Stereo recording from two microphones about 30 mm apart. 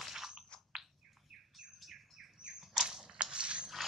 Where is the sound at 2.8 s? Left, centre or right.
Centre.